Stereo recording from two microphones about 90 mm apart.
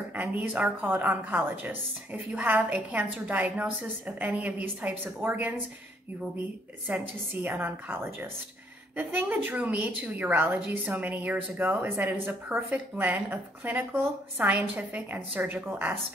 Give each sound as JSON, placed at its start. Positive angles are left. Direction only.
{"t": 0.1, "sound": "a woman's voice", "side_deg": -15}
{"t": 6.9, "sound": "a woman's voice", "side_deg": -15}